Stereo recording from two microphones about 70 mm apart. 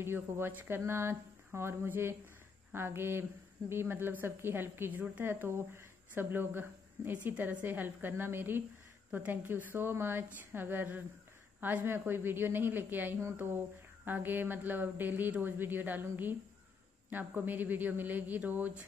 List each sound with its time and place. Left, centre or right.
0.0 s a woman's voice: right